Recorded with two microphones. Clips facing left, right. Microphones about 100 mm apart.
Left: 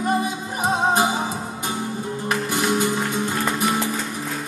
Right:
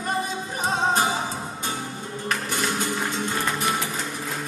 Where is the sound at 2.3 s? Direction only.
15° left (ahead or behind).